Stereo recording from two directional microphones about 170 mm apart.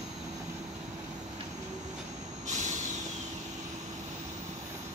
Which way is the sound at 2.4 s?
45° right (ahead or behind).